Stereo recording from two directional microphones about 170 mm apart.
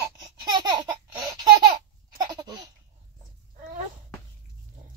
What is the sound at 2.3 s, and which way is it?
Laughter, 25° right (ahead or behind).